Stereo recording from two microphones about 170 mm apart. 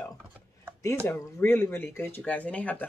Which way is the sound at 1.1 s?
15° left (ahead or behind).